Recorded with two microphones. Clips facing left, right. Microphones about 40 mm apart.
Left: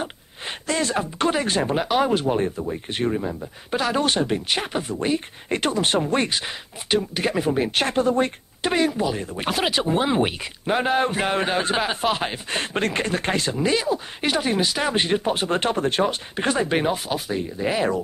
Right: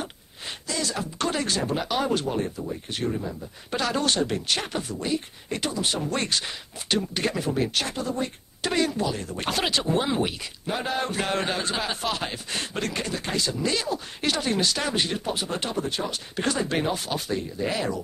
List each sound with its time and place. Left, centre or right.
0.7 s speech: left
1.9 s speech: left
3.7 s speech: centre; by 6.0 s left
6.0 s speech: left
7.8 s speech: left
8.6 s speech: left
13.6 s speech: left
16.3 s speech: left